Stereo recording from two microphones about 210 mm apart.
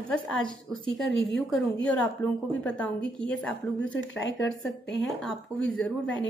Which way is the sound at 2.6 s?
5° left (ahead or behind).